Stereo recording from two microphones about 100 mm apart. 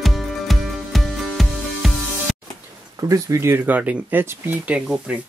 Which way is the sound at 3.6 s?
15° right (ahead or behind).